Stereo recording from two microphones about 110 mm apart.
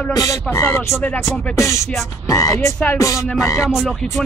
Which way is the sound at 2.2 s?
30° left (ahead or behind).